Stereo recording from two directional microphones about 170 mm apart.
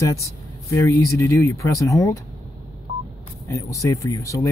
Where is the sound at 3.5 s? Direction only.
20° left (ahead or behind).